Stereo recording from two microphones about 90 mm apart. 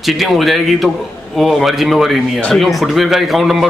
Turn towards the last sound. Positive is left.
turn(degrees=0)  # may be behind; listen again after turning